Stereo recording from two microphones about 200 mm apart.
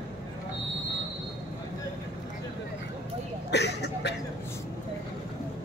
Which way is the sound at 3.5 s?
60° left (ahead or behind).